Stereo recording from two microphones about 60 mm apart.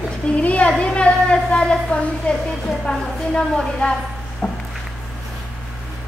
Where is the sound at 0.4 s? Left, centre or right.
Left.